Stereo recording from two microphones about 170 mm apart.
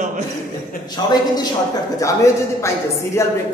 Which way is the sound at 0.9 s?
25° left (ahead or behind).